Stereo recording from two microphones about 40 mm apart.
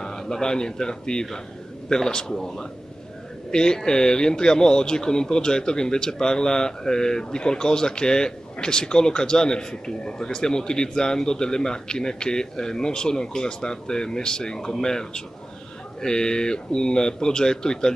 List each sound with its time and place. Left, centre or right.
0.0 s a man's voice: centre